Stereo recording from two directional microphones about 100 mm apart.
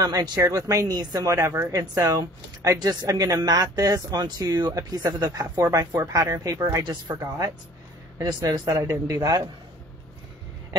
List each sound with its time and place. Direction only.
0.0 s speech: 40° right (ahead or behind)
6.8 s speech: 45° right (ahead or behind)
7.2 s speech: 30° right (ahead or behind)